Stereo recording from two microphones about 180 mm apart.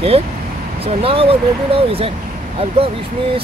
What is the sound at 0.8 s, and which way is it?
Vehicle, 30° right (ahead or behind).